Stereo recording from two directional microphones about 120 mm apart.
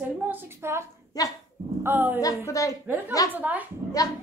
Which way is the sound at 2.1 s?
30° left (ahead or behind).